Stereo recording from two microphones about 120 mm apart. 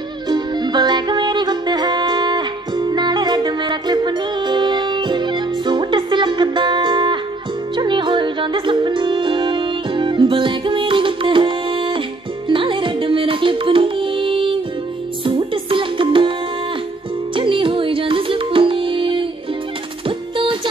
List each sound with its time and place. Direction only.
0.3 s music: 40° right (ahead or behind)